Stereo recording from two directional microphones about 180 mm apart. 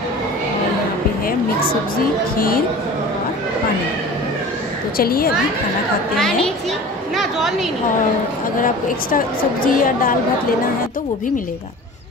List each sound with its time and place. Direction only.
4.9 s a woman's voice: 55° left (ahead or behind)
6.1 s a child's voice: centre (ahead or behind)
7.2 s a sound: centre (ahead or behind)
8.5 s a woman's voice: 50° left (ahead or behind)